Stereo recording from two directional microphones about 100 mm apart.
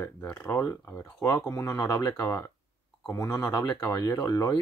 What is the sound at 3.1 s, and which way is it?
Speech, 35° left (ahead or behind).